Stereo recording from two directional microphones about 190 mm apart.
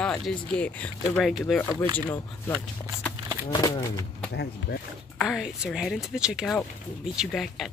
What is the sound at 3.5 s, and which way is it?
Speech, 20° left (ahead or behind).